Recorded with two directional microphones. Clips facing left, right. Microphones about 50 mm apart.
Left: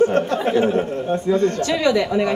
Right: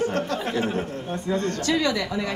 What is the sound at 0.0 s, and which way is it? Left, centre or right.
A man's voice, left.